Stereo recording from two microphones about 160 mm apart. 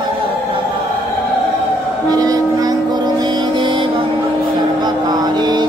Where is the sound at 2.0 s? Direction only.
25° right (ahead or behind).